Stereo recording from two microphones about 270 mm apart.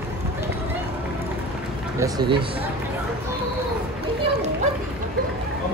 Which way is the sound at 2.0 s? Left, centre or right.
Centre.